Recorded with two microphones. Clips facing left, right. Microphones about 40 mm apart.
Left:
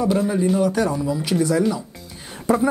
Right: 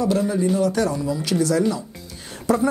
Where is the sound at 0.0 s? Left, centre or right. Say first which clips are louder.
Left 1 dB; centre.